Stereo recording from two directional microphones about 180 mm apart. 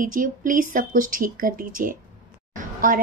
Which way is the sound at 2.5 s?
50° right (ahead or behind).